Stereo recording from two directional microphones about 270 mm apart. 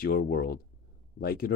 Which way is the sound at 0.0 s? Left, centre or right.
Left.